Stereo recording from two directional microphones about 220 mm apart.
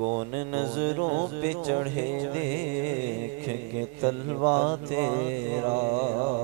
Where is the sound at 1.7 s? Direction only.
15° right (ahead or behind).